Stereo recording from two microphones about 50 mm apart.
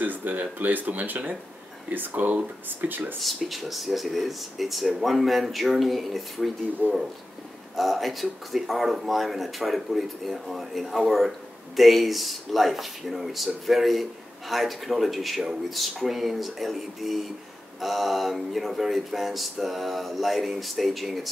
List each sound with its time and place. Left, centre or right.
0.0 s speech: right
3.2 s speech: centre
6.8 s speech: right
7.7 s speech: centre